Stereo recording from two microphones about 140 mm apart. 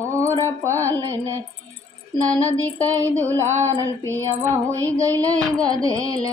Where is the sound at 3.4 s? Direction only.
55° right (ahead or behind).